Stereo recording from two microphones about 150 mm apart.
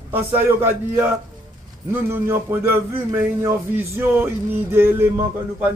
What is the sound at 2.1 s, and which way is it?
Speech, 15° right (ahead or behind).